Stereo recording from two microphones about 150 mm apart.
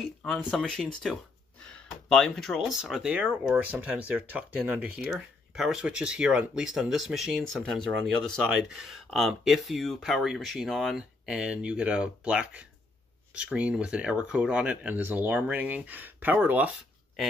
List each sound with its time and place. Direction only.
0.0 s speech: centre (ahead or behind)